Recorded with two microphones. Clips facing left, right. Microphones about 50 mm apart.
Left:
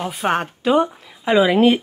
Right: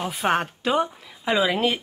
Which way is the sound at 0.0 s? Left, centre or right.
Centre.